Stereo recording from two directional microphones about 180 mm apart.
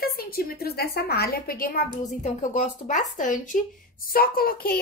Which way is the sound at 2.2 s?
40° left (ahead or behind).